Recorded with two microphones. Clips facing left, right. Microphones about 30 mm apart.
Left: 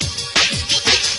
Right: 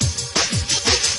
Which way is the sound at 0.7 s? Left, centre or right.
Left.